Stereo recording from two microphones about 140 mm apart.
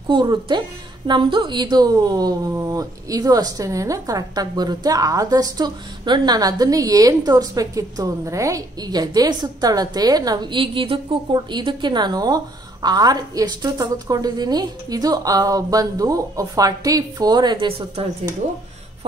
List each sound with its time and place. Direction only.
0.1 s a woman's voice: 35° right (ahead or behind)